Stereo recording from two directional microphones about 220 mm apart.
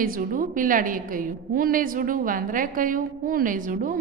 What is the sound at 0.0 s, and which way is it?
A woman's voice, 40° right (ahead or behind).